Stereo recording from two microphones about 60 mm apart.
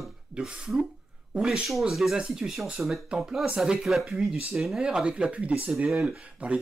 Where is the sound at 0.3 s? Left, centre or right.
Centre.